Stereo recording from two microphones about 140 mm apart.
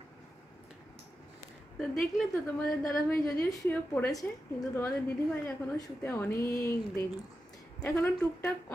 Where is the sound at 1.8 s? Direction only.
Centre (ahead or behind).